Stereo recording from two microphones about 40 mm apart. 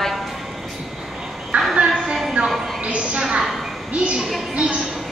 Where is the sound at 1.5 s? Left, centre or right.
Right.